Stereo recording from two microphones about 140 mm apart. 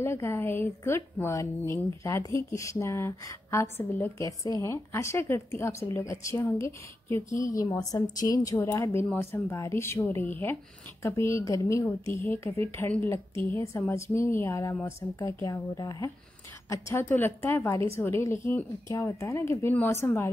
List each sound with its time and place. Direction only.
0.0 s a woman's voice: 15° left (ahead or behind)